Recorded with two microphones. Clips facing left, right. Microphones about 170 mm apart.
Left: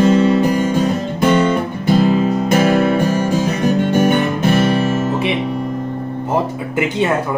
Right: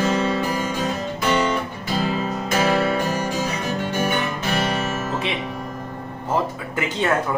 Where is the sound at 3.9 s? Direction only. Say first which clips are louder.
Left 9 dB; 50° left (ahead or behind).